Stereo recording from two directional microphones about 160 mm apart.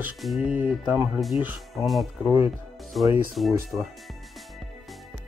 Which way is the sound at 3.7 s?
10° right (ahead or behind).